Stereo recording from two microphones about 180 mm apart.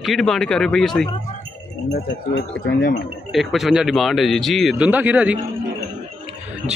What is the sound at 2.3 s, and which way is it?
Speech, 60° left (ahead or behind).